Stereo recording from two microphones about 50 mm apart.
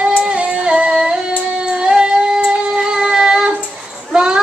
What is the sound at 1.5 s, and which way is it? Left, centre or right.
Music, right.